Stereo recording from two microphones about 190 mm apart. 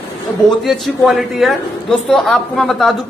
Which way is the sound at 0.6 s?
Centre (ahead or behind).